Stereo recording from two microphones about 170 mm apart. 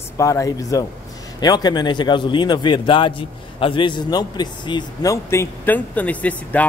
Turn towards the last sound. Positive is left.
turn(degrees=10)  # may be behind; listen again after turning